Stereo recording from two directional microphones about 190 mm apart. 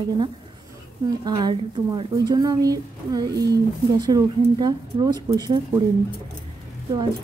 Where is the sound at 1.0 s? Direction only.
20° right (ahead or behind).